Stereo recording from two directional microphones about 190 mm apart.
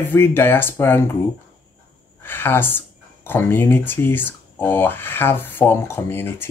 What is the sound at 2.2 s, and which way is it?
Speech, 10° left (ahead or behind).